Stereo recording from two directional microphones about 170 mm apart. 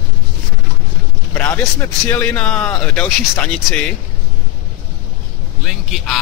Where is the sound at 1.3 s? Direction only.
10° left (ahead or behind).